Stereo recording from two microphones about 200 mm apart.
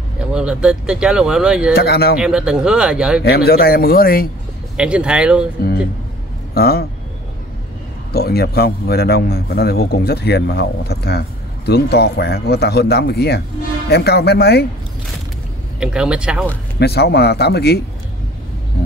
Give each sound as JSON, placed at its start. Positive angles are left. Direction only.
{"t": 0.3, "sound": "speech", "side_deg": -5}
{"t": 1.8, "sound": "a man's voice", "side_deg": 55}
{"t": 2.1, "sound": "speech", "side_deg": -5}
{"t": 3.3, "sound": "a man's voice", "side_deg": 50}
{"t": 4.7, "sound": "speech", "side_deg": -5}
{"t": 6.5, "sound": "a man's voice", "side_deg": 50}
{"t": 8.1, "sound": "a man's voice", "side_deg": 50}
{"t": 15.8, "sound": "speech", "side_deg": -5}
{"t": 16.8, "sound": "speech", "side_deg": 55}